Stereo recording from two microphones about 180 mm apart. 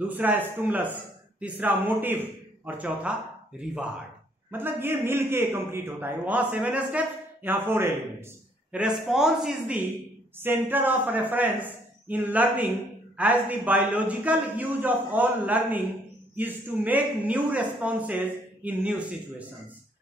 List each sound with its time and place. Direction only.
0.2 s a man's voice: 10° right (ahead or behind)